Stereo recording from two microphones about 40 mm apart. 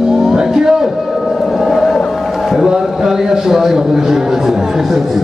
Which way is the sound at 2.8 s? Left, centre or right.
Centre.